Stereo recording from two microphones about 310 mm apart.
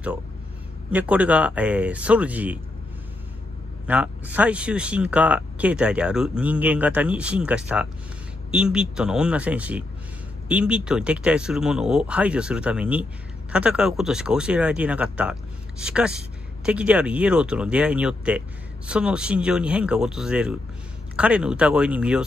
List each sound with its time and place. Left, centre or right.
0.9 s speech: centre
3.8 s speech: centre